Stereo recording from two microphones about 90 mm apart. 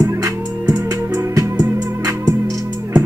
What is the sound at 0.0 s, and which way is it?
Music, 40° right (ahead or behind).